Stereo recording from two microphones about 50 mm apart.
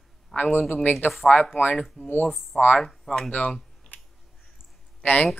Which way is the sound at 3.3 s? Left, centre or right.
Left.